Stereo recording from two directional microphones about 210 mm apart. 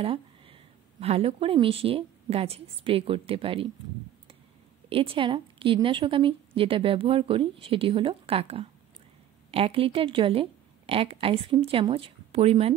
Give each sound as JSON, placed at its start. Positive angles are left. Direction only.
{"t": 0.0, "sound": "a woman's voice", "side_deg": -25}
{"t": 4.8, "sound": "a woman's voice", "side_deg": -25}